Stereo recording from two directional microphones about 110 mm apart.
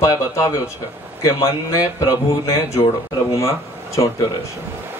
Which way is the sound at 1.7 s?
30° left (ahead or behind).